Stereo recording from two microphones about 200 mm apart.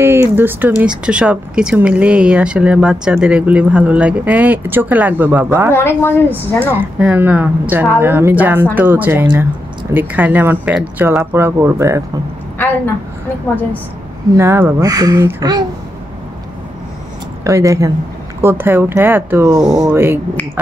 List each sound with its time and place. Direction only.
0.0 s speech: 15° right (ahead or behind)
5.8 s speech: 10° left (ahead or behind)
6.6 s speech: 10° right (ahead or behind)
14.3 s speech: 15° right (ahead or behind)
17.4 s speech: 15° right (ahead or behind)